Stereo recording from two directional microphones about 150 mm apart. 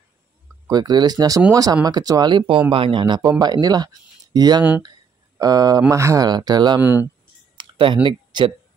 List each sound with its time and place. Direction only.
0.7 s speech: 25° right (ahead or behind)
6.8 s speech: 15° right (ahead or behind)
7.5 s speech: 35° right (ahead or behind)